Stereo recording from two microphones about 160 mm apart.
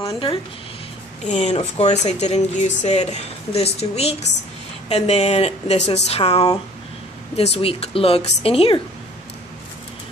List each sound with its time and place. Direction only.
1.2 s a woman's voice: 45° left (ahead or behind)